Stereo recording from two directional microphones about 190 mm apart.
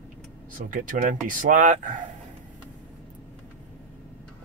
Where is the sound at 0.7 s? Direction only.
45° right (ahead or behind).